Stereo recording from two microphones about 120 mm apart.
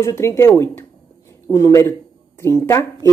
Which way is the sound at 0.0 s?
20° left (ahead or behind).